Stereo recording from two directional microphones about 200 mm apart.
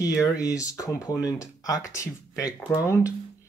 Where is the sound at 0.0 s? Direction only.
15° left (ahead or behind).